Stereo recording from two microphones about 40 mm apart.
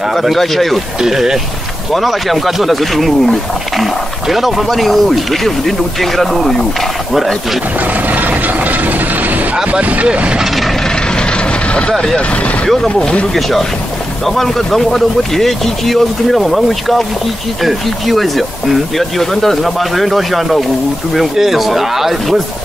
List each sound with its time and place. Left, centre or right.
0.1 s speech: centre
1.0 s speech: centre
1.9 s speech: centre
8.1 s vehicle: right
9.7 s speech: right
13.3 s speech: centre